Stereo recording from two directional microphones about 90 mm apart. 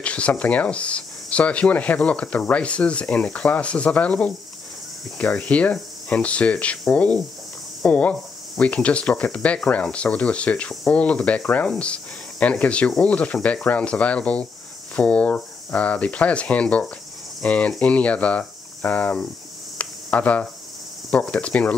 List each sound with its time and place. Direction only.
0.0 s speech: 15° left (ahead or behind)
19.8 s a sound: 15° left (ahead or behind)
21.1 s speech: 15° left (ahead or behind)